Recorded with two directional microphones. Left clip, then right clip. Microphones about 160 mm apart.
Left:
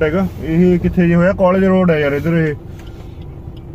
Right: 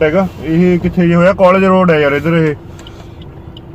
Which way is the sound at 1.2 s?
15° right (ahead or behind).